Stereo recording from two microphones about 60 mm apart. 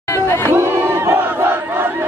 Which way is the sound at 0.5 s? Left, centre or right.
Right.